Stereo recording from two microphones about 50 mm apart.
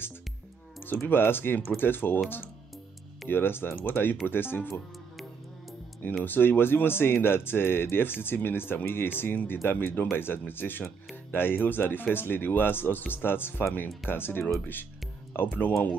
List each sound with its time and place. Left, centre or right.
0.8 s speech: left
3.3 s speech: left
6.2 s speech: left